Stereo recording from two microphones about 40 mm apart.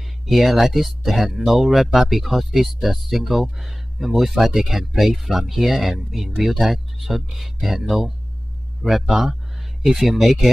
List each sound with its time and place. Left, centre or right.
0.3 s speech: centre